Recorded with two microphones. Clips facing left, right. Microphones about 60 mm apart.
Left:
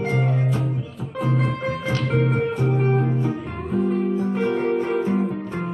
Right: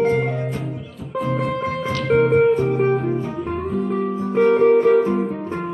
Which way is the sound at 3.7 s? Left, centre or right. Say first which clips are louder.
Left 4 dB; centre.